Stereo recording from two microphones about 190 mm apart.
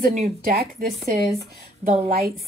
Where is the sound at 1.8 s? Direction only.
35° right (ahead or behind).